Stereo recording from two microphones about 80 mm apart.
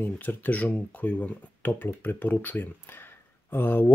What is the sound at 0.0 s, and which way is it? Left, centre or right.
Speech, left.